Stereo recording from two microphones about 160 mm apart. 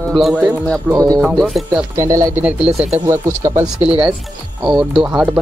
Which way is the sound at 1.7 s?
15° right (ahead or behind).